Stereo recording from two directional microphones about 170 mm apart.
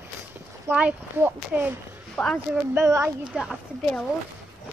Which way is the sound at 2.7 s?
15° right (ahead or behind).